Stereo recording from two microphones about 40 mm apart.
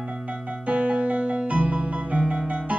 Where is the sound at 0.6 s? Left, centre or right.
Right.